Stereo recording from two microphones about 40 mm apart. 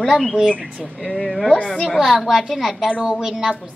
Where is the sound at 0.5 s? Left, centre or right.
Right.